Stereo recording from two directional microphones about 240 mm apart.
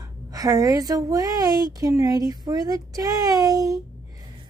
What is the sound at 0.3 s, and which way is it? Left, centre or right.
A woman's voice, centre.